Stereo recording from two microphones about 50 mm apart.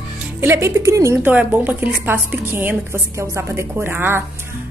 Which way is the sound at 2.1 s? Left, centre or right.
Right.